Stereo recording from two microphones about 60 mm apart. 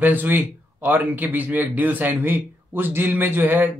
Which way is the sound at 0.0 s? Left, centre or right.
Right.